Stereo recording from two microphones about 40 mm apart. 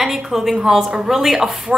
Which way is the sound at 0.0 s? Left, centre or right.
Centre.